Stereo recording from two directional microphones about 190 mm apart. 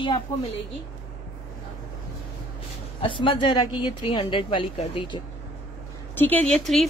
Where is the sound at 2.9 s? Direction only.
25° left (ahead or behind).